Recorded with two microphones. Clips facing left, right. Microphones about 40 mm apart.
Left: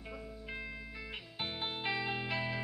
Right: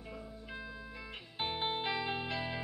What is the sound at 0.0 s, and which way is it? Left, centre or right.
Music, centre.